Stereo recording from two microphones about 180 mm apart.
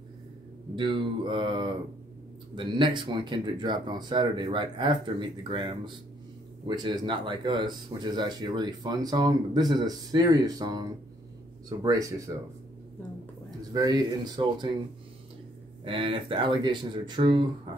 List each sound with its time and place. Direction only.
0.7 s speech: 25° right (ahead or behind)
13.7 s speech: 20° right (ahead or behind)
15.8 s speech: 30° right (ahead or behind)
17.7 s music: 30° right (ahead or behind)